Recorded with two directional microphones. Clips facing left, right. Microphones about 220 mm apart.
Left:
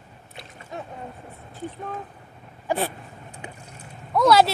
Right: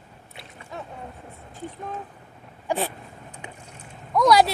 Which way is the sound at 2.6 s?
10° left (ahead or behind).